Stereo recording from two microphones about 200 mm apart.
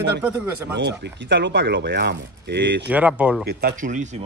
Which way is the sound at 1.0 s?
60° right (ahead or behind).